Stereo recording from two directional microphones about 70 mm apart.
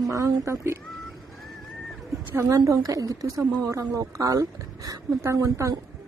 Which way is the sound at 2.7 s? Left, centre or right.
Right.